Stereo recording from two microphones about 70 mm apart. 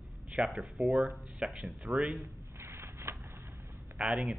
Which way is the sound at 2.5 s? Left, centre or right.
Right.